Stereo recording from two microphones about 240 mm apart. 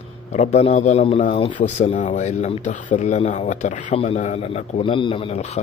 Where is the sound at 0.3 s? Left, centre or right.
Left.